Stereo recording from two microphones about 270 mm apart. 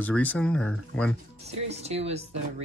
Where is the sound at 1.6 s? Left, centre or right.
Right.